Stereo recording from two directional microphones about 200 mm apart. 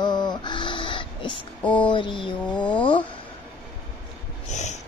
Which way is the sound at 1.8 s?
25° left (ahead or behind).